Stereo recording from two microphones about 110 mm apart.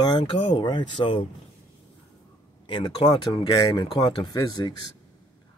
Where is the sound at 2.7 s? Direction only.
45° left (ahead or behind).